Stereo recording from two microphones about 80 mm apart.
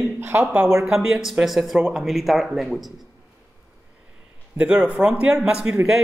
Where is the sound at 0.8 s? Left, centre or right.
Centre.